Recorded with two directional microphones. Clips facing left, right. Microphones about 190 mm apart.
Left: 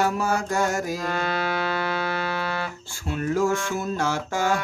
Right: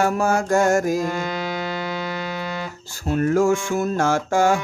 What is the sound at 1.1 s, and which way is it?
Music, 15° right (ahead or behind).